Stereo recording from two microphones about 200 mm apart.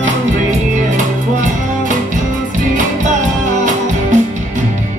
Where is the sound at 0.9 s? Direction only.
40° right (ahead or behind).